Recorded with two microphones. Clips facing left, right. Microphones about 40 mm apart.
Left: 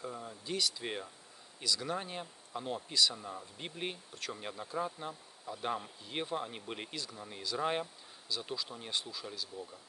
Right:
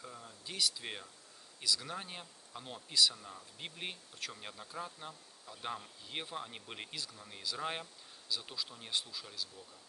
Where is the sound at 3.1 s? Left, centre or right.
Centre.